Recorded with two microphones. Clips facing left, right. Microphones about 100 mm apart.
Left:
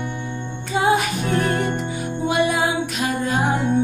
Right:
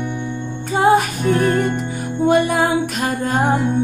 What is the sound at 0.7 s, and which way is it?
Music, 45° right (ahead or behind).